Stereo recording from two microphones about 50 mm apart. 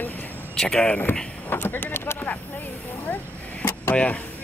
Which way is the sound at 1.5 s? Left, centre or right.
Left.